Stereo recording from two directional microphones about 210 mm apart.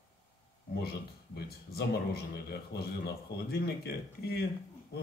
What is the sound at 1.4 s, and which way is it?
A man's voice, 50° left (ahead or behind).